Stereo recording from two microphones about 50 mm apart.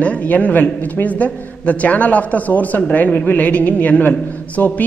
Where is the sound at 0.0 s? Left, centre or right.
Left.